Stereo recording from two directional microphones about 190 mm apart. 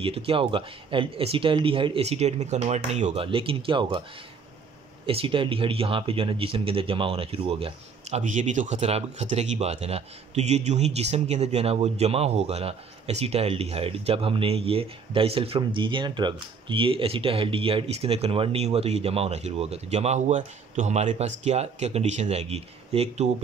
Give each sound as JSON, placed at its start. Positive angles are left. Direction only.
{"t": 0.0, "sound": "speech", "side_deg": -30}
{"t": 5.0, "sound": "speech", "side_deg": -30}